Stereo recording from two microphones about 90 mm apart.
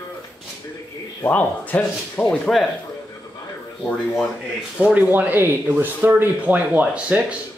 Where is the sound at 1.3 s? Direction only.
15° left (ahead or behind).